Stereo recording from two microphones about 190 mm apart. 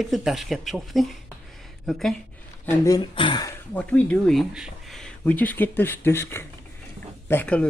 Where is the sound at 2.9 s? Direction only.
25° left (ahead or behind).